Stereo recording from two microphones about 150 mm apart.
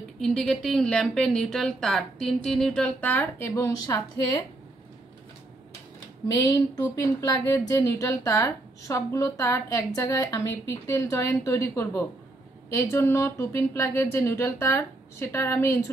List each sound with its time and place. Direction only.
0.2 s a woman's voice: 5° left (ahead or behind); by 4.4 s 20° left (ahead or behind)
6.3 s a woman's voice: 25° left (ahead or behind)